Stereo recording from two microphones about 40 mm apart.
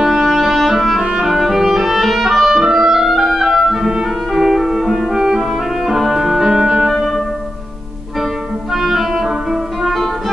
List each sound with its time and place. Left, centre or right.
0.0 s music: centre
1.1 s clarinet: centre
4.3 s music: centre
5.1 s clarinet: centre
5.4 s music: centre
6.6 s music: centre
6.9 s music: centre
8.7 s music: centre